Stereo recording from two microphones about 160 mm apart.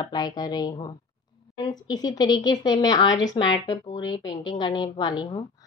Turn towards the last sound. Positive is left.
turn(degrees=30)  # may be behind; listen again after turning